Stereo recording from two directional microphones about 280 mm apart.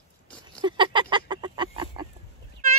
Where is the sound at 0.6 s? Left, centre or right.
Centre.